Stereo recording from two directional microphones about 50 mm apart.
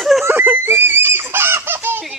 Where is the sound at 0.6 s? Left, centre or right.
Right.